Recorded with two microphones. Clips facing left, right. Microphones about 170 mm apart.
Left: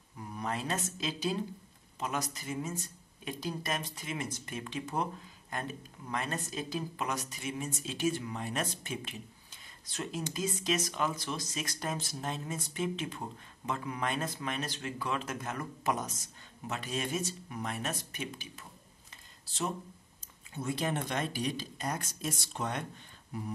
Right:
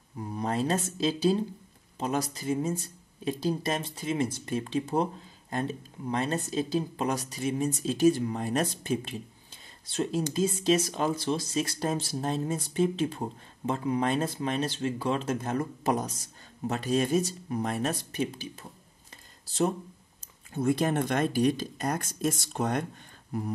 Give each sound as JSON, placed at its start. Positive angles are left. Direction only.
{"t": 0.2, "sound": "speech", "side_deg": -30}